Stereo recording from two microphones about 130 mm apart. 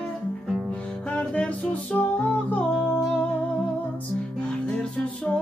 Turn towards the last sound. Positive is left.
turn(degrees=10)  # may be behind; listen again after turning